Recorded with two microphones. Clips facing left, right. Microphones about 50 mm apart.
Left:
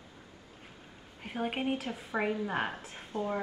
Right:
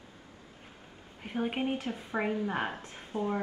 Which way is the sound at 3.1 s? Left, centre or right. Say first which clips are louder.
Right 1 dB; centre.